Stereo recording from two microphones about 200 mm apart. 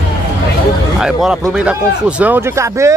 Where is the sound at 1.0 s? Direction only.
5° right (ahead or behind).